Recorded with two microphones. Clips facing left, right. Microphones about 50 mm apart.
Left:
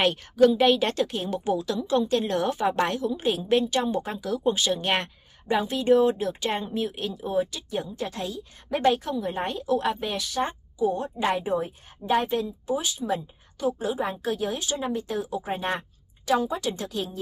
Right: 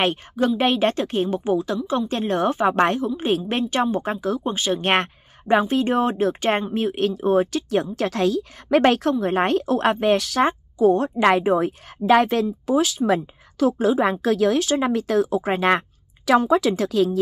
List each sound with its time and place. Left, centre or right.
0.0 s speech: right
1.4 s a woman's voice: right